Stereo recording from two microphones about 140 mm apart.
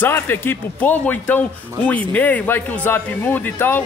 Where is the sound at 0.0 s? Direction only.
15° left (ahead or behind).